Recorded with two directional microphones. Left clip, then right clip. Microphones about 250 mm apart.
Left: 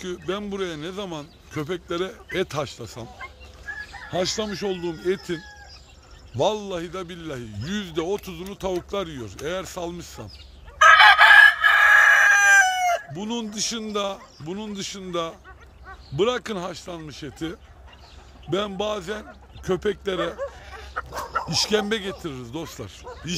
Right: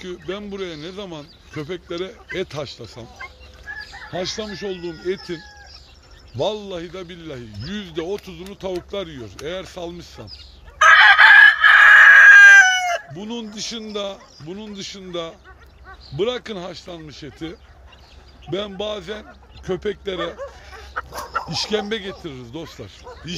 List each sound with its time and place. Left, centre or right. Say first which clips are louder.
0.0 s speech: left 1 dB; centre
4.1 s speech: left 2 dB; left
10.8 s chicken: right 2 dB; centre
16.2 s speech: even; centre
20.3 s snicker: left 1 dB; left
21.5 s speech: left 2 dB; centre